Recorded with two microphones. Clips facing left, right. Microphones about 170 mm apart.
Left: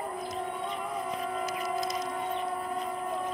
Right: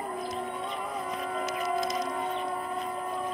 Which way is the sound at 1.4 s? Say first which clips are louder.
Right 5 dB; 40° left (ahead or behind).